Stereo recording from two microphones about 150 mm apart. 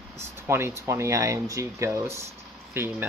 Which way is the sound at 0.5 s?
15° right (ahead or behind).